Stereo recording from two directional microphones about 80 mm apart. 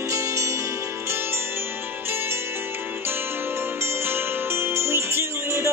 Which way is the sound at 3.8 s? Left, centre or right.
Right.